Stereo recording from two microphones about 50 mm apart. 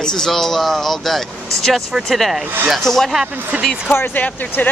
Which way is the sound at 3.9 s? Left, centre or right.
Left.